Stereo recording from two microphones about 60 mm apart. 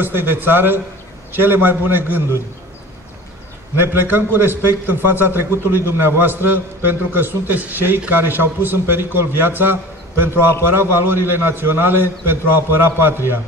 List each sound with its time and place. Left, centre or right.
0.0 s a man's voice: right
3.7 s a man's voice: right